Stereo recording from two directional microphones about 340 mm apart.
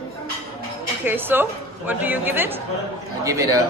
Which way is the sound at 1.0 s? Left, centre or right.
Centre.